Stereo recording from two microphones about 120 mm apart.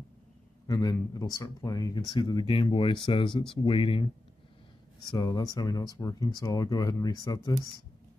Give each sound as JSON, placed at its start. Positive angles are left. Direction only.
{"t": 0.7, "sound": "speech", "side_deg": 30}
{"t": 5.1, "sound": "speech", "side_deg": 35}